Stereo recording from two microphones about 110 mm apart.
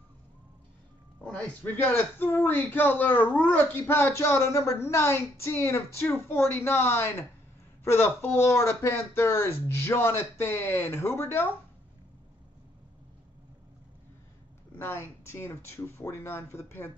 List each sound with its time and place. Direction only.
1.2 s a man's voice: 10° left (ahead or behind)
14.8 s a woman's voice: 20° left (ahead or behind)